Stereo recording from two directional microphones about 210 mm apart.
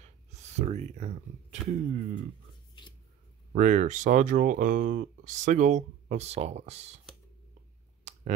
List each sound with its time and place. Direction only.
0.0 s speech: 35° right (ahead or behind)
3.5 s speech: 35° right (ahead or behind)